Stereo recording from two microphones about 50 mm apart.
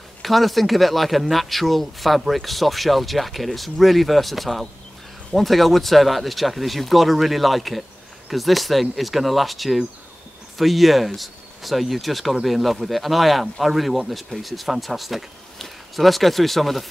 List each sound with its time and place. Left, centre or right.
0.2 s speech: centre